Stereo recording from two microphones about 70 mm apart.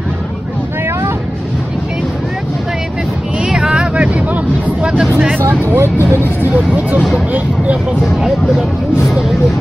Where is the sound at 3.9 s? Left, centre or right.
Centre.